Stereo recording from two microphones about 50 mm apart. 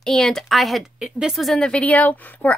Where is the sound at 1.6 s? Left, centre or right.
Left.